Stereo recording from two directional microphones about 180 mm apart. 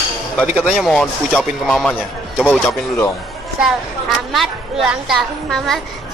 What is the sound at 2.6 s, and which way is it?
Speech, 15° left (ahead or behind).